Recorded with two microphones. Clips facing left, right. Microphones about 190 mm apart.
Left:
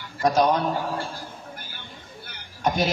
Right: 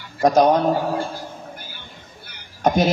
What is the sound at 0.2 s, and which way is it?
Speech, 50° right (ahead or behind).